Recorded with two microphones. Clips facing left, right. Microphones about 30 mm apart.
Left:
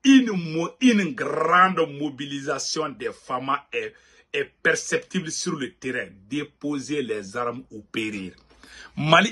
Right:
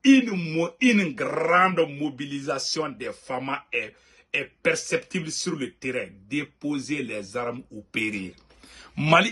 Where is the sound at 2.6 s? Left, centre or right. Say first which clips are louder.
Left 1 dB; right.